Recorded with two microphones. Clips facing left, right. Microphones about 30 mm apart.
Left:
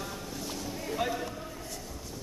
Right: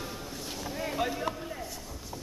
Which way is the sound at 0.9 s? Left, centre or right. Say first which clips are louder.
Left 1 dB; centre.